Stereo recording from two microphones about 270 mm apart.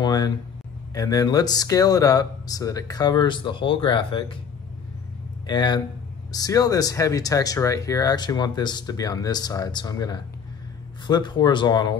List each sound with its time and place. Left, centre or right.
0.0 s a sound: centre
0.9 s speech: centre
5.5 s speech: centre